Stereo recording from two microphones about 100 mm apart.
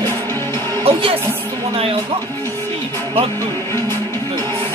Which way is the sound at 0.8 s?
70° right (ahead or behind).